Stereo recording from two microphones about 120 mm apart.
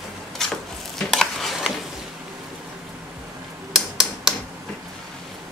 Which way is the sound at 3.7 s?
Centre (ahead or behind).